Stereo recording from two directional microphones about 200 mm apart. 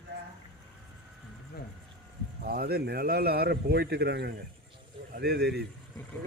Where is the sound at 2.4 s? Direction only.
50° right (ahead or behind).